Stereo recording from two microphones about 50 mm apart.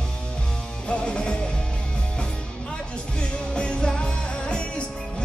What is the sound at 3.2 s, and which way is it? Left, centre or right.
Music, centre.